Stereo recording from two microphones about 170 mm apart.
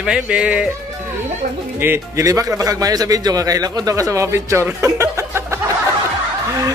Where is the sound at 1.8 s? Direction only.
15° right (ahead or behind).